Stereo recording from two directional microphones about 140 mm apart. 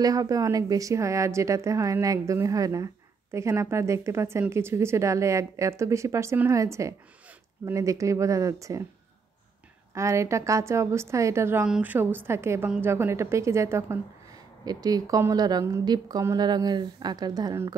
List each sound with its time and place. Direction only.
0.0 s a woman's voice: 25° right (ahead or behind)
9.9 s a woman's voice: 20° right (ahead or behind)